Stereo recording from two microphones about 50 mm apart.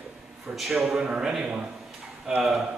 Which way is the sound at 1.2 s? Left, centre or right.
Centre.